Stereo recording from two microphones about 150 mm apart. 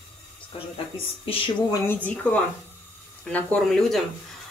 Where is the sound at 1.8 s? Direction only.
10° left (ahead or behind).